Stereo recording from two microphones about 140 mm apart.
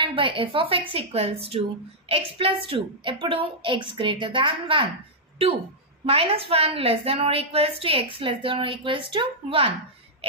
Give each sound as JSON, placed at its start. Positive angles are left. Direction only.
{"t": 0.0, "sound": "a woman's voice", "side_deg": -35}
{"t": 6.0, "sound": "a woman's voice", "side_deg": -45}